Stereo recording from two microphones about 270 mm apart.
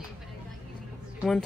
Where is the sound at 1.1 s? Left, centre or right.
Centre.